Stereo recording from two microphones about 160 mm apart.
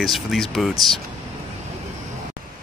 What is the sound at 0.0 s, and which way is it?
Speech, centre (ahead or behind).